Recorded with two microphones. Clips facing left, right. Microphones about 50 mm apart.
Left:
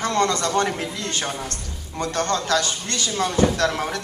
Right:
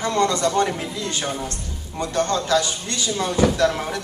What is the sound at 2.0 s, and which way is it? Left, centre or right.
Speech, left.